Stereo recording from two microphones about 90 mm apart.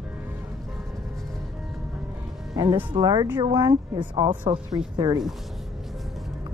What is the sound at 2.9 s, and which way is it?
A woman's voice, 50° right (ahead or behind).